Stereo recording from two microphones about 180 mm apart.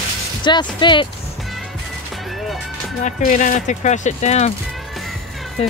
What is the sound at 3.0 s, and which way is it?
Speech, 45° left (ahead or behind).